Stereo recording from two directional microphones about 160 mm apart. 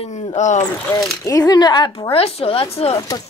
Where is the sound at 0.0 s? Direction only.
35° left (ahead or behind).